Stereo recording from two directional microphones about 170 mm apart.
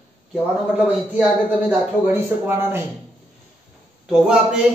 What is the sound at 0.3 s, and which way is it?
Speech, 5° right (ahead or behind).